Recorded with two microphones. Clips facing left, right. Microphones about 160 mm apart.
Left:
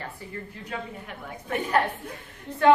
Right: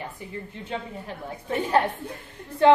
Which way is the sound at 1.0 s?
30° right (ahead or behind).